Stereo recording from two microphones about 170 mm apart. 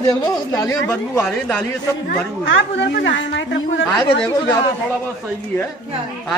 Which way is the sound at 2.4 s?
90° left.